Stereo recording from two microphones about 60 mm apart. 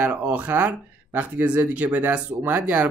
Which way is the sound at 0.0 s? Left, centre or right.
Right.